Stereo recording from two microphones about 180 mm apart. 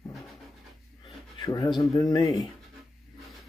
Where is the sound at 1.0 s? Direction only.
25° left (ahead or behind).